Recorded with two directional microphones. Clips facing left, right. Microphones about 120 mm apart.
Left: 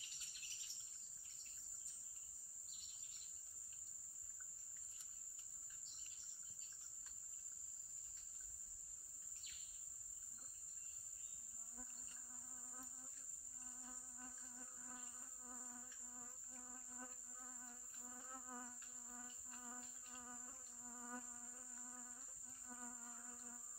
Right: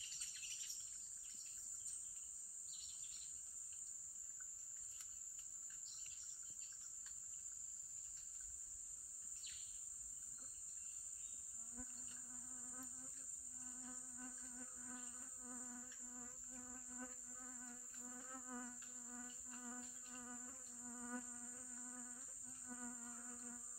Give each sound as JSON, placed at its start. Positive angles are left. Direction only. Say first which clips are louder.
{"t": 12.7, "sound": "insect", "louder": "right 3 dB", "side_deg": 20}